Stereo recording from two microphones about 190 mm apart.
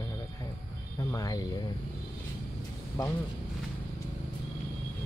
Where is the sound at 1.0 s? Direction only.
15° left (ahead or behind).